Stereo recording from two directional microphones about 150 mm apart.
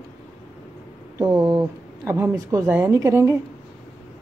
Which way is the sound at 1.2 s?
5° right (ahead or behind).